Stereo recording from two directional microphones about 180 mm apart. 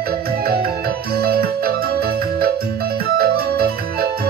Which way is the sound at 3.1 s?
60° right (ahead or behind).